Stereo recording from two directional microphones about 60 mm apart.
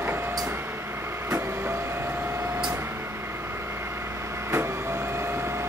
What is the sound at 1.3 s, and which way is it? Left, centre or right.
Vehicle, right.